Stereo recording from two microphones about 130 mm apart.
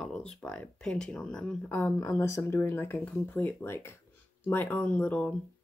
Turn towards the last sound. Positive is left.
turn(degrees=10)  # may be behind; listen again after turning